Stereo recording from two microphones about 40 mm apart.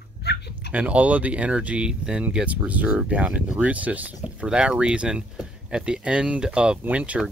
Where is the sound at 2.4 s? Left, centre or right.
Right.